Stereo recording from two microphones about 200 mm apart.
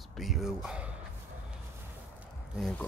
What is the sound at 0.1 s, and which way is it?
Speech, centre (ahead or behind).